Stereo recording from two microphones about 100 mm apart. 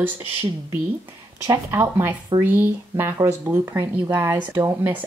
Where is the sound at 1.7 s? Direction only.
20° right (ahead or behind).